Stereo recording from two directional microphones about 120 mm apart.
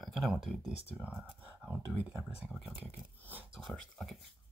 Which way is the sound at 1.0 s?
15° right (ahead or behind).